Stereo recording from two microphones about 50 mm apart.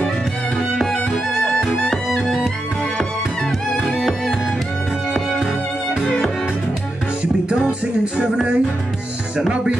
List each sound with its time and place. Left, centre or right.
1.1 s music: centre
3.7 s music: centre
8.0 s music: centre